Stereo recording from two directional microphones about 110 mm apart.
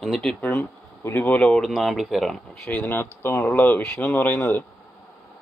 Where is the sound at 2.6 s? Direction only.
15° left (ahead or behind).